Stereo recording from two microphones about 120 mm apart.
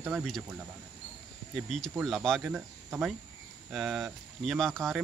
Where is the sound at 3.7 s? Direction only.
Centre (ahead or behind).